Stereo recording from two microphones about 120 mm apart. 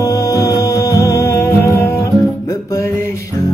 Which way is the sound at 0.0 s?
30° left (ahead or behind).